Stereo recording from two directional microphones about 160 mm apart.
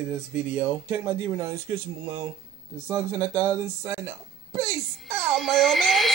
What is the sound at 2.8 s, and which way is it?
Speech, 15° right (ahead or behind).